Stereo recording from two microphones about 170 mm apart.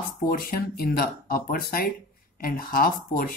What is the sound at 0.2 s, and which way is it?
Speech, 55° left (ahead or behind).